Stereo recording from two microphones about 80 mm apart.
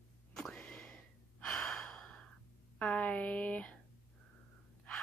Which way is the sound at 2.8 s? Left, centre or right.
Centre.